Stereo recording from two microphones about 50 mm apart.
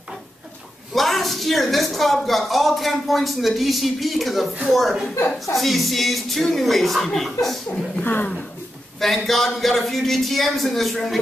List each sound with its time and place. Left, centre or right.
0.9 s speech: centre
8.0 s speech: left
9.0 s speech: centre